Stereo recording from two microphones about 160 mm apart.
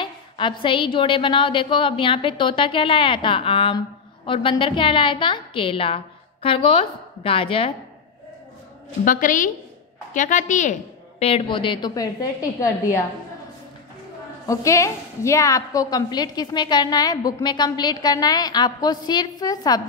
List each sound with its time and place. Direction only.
0.0 s a woman's voice: 30° left (ahead or behind)
9.0 s a woman's voice: 55° left (ahead or behind); by 13.0 s 20° left (ahead or behind)
14.5 s a woman's voice: 20° left (ahead or behind)